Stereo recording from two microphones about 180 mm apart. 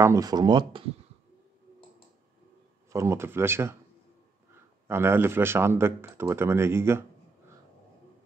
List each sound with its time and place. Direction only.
0.0 s speech: 20° right (ahead or behind)
2.9 s speech: 15° right (ahead or behind)
4.8 s speech: 15° right (ahead or behind)